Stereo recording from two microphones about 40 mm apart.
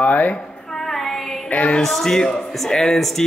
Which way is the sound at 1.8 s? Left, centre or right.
Centre.